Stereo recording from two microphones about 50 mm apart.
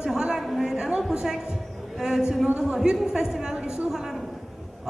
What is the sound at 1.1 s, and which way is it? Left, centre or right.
Speech, centre.